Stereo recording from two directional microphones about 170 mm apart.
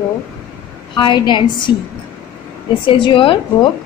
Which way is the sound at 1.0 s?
25° left (ahead or behind).